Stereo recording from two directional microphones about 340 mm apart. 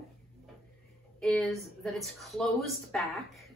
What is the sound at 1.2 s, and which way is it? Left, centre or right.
A woman's voice, centre.